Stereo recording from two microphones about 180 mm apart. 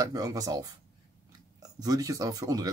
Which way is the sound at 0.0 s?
20° right (ahead or behind).